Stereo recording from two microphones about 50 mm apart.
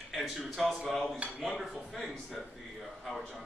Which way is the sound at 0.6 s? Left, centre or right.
Centre.